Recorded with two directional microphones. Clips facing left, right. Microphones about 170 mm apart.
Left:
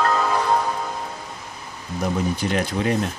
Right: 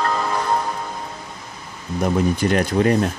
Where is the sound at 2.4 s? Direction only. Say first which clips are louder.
Right 5 dB; 50° right (ahead or behind).